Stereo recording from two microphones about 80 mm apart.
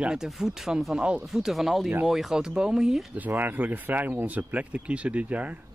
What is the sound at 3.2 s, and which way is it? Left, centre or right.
Speech, right.